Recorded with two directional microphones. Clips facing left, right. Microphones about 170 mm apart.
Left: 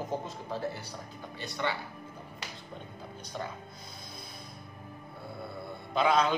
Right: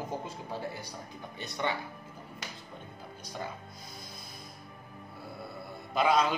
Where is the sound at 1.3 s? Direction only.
20° right (ahead or behind).